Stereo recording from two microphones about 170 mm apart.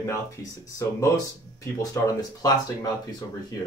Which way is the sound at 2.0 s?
20° left (ahead or behind).